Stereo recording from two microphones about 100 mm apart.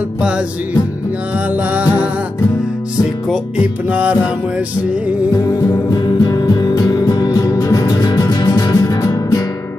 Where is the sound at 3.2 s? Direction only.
5° right (ahead or behind).